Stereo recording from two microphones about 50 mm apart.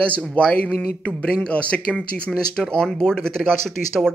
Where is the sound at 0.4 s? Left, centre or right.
Centre.